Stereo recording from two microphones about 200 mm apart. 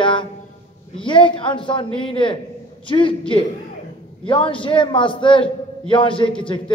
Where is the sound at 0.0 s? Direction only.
25° left (ahead or behind).